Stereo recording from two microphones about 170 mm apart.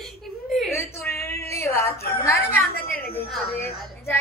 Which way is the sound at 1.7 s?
15° left (ahead or behind).